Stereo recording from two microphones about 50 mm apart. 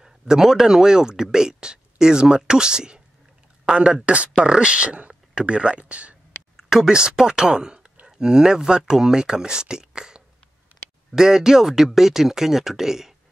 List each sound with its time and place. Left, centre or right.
0.0 s speech: centre
6.5 s a sound: centre
6.9 s speech: centre